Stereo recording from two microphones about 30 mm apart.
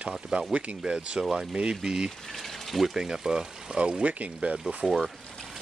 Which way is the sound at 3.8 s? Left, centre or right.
Right.